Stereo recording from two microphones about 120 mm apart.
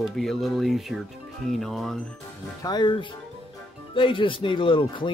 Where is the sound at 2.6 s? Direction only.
35° left (ahead or behind).